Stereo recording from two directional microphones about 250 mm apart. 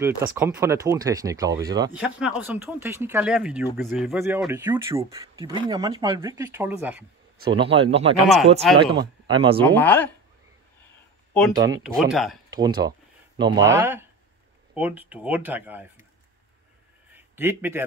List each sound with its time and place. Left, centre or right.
0.4 s speech: centre
2.0 s speech: centre
7.5 s speech: right
9.7 s speech: centre
11.5 s speech: centre
11.8 s speech: centre
12.4 s speech: centre
17.1 s speech: centre